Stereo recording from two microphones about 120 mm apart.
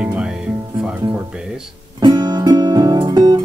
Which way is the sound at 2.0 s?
35° right (ahead or behind).